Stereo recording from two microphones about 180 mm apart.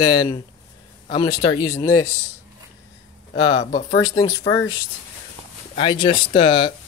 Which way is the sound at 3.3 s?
35° left (ahead or behind).